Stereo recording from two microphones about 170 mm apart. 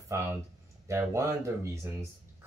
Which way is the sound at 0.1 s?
15° right (ahead or behind).